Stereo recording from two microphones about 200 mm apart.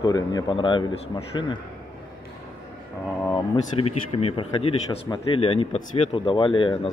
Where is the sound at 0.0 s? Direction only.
20° left (ahead or behind).